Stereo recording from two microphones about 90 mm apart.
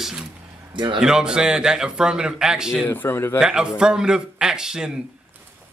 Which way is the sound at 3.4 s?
10° right (ahead or behind).